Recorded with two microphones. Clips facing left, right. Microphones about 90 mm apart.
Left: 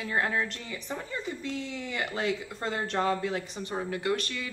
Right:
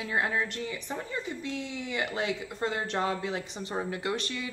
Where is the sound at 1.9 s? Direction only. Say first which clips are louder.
Even; 10° right (ahead or behind).